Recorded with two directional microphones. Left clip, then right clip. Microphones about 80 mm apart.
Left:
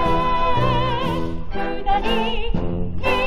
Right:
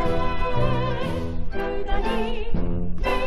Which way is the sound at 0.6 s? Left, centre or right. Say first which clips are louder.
Left 5 dB; left.